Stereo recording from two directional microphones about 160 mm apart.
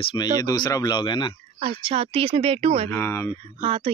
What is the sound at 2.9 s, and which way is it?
Speech, 15° left (ahead or behind).